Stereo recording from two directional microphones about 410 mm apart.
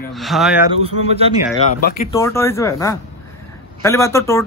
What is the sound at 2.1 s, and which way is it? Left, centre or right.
Speech, centre.